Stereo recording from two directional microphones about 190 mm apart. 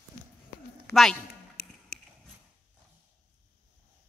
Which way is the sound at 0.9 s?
60° right (ahead or behind).